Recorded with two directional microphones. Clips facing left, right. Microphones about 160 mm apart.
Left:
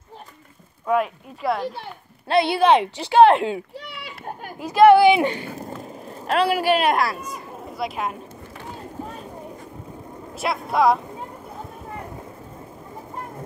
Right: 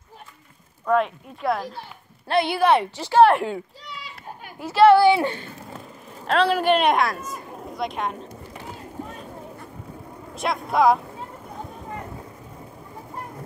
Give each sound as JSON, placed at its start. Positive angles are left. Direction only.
{"t": 0.8, "sound": "a woman's voice", "side_deg": 5}
{"t": 2.5, "sound": "speech", "side_deg": 20}
{"t": 3.8, "sound": "children playing", "side_deg": 65}
{"t": 4.6, "sound": "speech", "side_deg": 15}
{"t": 5.6, "sound": "vehicle", "side_deg": 40}
{"t": 6.2, "sound": "a woman's voice", "side_deg": 10}
{"t": 10.3, "sound": "a woman's voice", "side_deg": 5}